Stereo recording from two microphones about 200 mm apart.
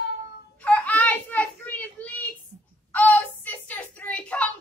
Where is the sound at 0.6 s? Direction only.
5° left (ahead or behind).